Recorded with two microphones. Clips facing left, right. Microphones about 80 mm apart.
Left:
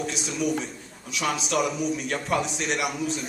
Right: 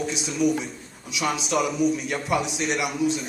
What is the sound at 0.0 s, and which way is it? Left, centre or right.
A man's voice, centre.